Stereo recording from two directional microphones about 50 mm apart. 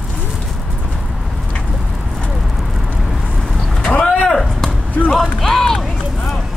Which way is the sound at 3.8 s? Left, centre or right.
Centre.